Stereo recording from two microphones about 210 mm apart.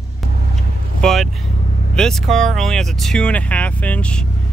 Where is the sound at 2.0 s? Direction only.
Centre (ahead or behind).